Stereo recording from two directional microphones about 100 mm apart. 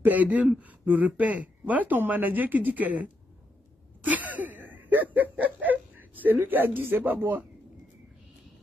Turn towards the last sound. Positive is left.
turn(degrees=-20)  # may be behind; listen again after turning